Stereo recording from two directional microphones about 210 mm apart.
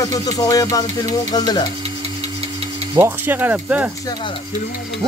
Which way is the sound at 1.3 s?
20° left (ahead or behind).